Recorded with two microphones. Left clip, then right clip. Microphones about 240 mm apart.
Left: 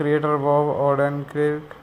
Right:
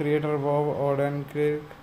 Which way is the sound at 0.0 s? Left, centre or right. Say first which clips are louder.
Left 5 dB; centre.